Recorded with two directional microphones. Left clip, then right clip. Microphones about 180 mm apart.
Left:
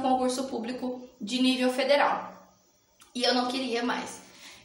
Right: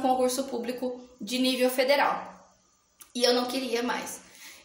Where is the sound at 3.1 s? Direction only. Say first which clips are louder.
Right 1 dB; 45° right (ahead or behind).